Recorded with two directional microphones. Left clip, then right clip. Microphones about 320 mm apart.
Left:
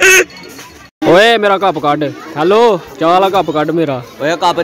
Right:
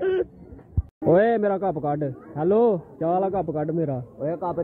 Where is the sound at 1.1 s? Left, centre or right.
Centre.